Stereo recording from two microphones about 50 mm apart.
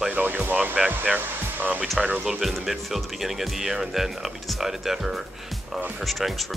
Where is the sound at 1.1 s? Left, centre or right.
Right.